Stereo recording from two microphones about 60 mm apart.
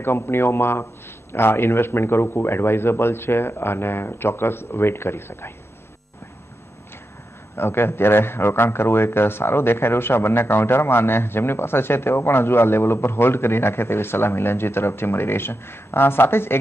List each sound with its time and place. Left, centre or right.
0.0 s a man's voice: left
7.5 s a man's voice: left